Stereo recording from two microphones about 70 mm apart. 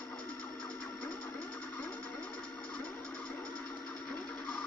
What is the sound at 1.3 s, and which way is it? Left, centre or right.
Music, centre.